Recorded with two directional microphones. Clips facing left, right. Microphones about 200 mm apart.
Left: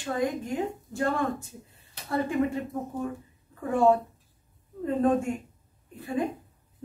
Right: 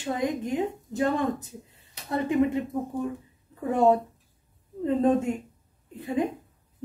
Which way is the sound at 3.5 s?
20° right (ahead or behind).